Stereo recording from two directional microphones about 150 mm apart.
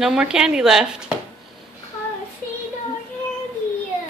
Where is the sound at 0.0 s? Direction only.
5° right (ahead or behind).